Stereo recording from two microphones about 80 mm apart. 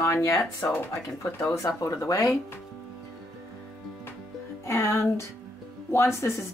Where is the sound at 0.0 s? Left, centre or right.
Left.